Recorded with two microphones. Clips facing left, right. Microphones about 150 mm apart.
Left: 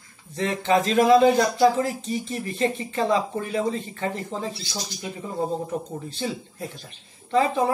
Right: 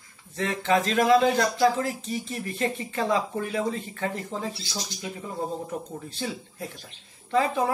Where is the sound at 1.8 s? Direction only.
Centre (ahead or behind).